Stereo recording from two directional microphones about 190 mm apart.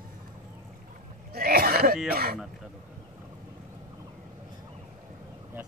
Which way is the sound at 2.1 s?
50° right (ahead or behind).